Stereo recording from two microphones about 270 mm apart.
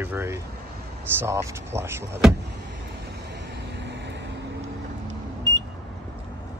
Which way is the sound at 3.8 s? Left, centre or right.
Right.